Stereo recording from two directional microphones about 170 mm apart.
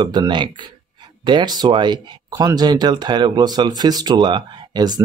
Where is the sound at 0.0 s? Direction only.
25° right (ahead or behind).